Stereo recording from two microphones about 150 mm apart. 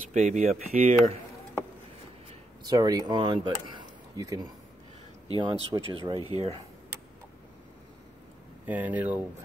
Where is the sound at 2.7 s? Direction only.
25° right (ahead or behind).